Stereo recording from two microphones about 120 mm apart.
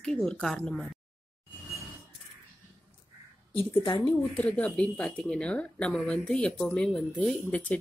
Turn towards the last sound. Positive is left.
turn(degrees=10)  # may be behind; listen again after turning